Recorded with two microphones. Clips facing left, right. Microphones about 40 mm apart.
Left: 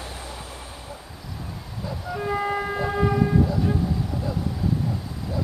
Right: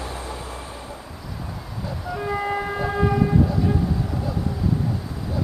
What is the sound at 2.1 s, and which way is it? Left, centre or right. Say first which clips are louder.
Vehicle: even; centre.